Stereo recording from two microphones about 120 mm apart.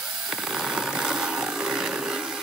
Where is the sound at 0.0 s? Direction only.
10° right (ahead or behind).